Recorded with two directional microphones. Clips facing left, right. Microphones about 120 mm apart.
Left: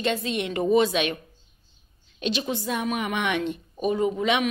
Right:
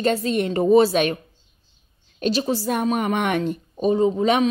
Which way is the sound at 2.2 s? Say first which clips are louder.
Right 6 dB; 40° right (ahead or behind).